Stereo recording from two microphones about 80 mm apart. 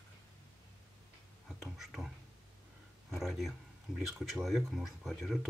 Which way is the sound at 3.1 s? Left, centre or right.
Centre.